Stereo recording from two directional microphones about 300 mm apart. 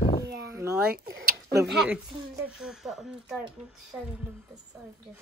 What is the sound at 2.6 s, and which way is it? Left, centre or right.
A man's voice, centre.